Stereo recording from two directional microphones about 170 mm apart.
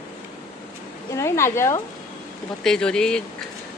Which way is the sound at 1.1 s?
15° left (ahead or behind).